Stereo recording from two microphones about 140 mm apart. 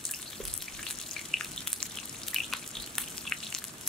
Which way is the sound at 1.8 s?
Centre (ahead or behind).